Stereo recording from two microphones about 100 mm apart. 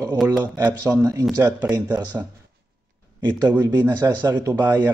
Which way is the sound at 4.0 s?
40° right (ahead or behind).